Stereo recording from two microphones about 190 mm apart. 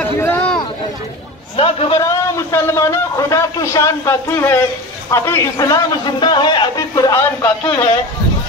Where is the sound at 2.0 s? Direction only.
15° left (ahead or behind).